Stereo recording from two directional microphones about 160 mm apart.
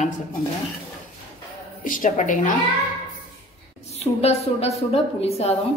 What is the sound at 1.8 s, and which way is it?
Speech, 55° left (ahead or behind).